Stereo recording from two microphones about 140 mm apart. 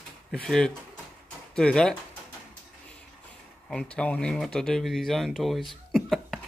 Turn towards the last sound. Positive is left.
turn(degrees=0)  # may be behind; listen again after turning